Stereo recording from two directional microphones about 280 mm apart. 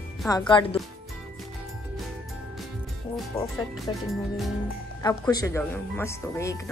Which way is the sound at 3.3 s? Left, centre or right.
Centre.